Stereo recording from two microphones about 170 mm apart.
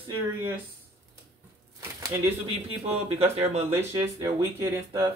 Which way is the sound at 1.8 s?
15° right (ahead or behind).